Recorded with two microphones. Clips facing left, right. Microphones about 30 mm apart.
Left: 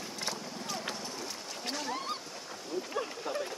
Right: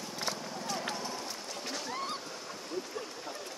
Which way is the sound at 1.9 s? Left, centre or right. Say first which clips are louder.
Left 1 dB; centre.